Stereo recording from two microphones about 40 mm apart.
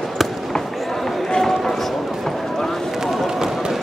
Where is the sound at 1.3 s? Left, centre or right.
Centre.